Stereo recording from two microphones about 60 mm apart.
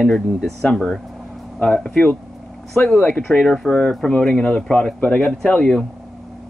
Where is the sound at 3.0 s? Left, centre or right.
Left.